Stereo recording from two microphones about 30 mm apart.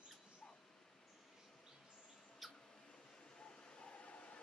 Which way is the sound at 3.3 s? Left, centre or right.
Left.